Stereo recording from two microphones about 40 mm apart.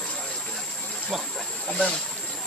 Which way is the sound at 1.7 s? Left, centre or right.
Centre.